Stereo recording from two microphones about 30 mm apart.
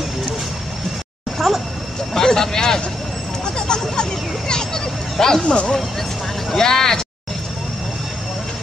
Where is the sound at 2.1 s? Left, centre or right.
Left.